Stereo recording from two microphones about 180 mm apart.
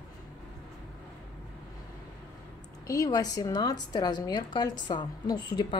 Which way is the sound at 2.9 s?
20° left (ahead or behind).